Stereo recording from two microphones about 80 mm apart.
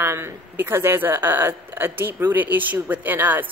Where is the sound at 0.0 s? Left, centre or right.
Right.